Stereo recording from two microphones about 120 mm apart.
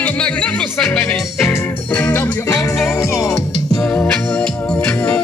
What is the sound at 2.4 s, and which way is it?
Music, 25° left (ahead or behind).